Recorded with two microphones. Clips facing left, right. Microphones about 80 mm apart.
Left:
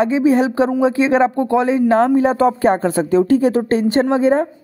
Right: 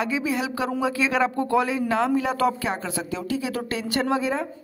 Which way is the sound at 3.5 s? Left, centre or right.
Left.